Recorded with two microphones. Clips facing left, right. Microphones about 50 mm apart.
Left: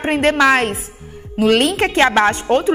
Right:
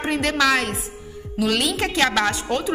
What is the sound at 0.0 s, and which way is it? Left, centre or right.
A woman's voice, left.